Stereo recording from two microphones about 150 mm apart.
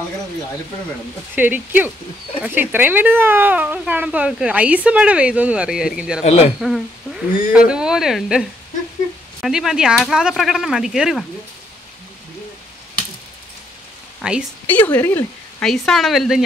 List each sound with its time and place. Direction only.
1.3 s speech: 10° right (ahead or behind)
6.2 s speech: 45° left (ahead or behind)
6.6 s speech: centre (ahead or behind)
14.2 s speech: 10° right (ahead or behind)
14.7 s speech: 10° left (ahead or behind)
15.6 s speech: centre (ahead or behind)